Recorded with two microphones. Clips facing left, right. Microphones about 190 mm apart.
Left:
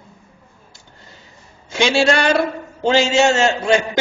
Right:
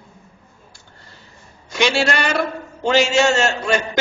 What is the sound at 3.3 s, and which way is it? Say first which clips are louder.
Speech: left 3 dB; 25° left (ahead or behind).